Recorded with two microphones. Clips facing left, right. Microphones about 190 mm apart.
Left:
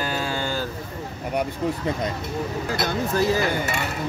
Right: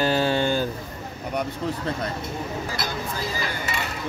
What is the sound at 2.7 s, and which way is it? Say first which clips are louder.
Speech: left 6 dB; 65° left (ahead or behind).